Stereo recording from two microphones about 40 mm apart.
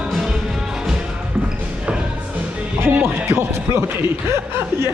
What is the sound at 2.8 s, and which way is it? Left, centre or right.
Speech, right.